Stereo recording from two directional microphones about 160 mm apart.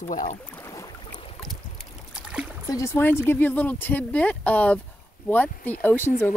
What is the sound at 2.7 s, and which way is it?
Speech, 20° left (ahead or behind).